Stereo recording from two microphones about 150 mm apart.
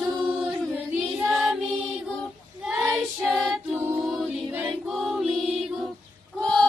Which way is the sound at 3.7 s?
15° right (ahead or behind).